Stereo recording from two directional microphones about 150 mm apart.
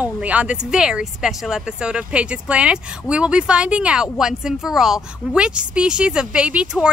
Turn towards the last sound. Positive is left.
turn(degrees=-5)  # may be behind; listen again after turning